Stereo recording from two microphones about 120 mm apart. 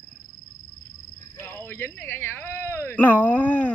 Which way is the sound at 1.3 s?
20° left (ahead or behind).